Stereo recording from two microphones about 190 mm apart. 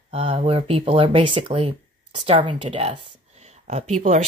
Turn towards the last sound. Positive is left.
turn(degrees=-40)  # may be behind; listen again after turning